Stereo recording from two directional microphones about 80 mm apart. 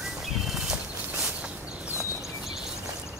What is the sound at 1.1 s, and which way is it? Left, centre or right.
Walk, centre.